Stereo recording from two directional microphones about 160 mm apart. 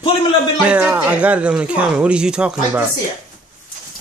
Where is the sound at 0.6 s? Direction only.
10° right (ahead or behind).